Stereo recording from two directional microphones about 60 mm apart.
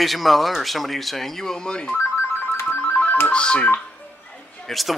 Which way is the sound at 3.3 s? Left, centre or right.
Centre.